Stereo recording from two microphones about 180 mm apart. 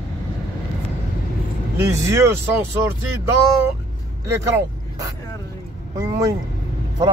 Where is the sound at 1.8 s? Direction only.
15° right (ahead or behind).